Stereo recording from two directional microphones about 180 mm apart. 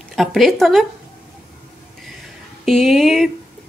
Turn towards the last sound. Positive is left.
turn(degrees=0)  # may be behind; listen again after turning